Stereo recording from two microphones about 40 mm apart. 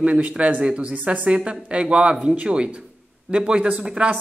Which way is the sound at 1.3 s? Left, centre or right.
Right.